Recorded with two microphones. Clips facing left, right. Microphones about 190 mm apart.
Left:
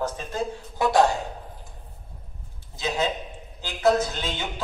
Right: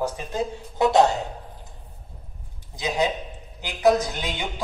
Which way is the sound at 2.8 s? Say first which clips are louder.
Right 2 dB; 15° right (ahead or behind).